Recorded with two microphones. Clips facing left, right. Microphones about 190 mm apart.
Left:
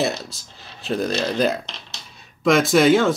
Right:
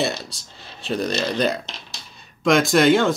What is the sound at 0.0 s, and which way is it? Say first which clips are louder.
Speech: left 1 dB; centre (ahead or behind).